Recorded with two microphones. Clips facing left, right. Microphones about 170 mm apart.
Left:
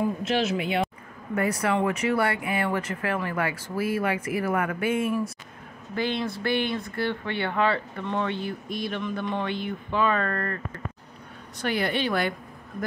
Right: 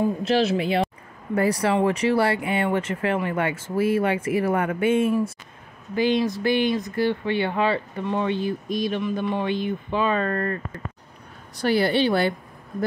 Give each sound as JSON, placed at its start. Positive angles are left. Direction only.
{"t": 0.0, "sound": "a woman's voice", "side_deg": -35}
{"t": 5.9, "sound": "speech", "side_deg": -15}
{"t": 11.5, "sound": "a woman's voice", "side_deg": -35}